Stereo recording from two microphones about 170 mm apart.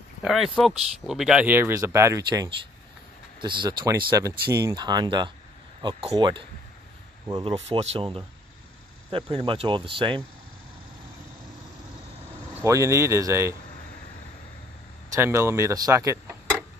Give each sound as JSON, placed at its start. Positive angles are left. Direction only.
{"t": 0.2, "sound": "speech", "side_deg": 0}
{"t": 12.6, "sound": "speech", "side_deg": -20}
{"t": 15.1, "sound": "speech", "side_deg": -15}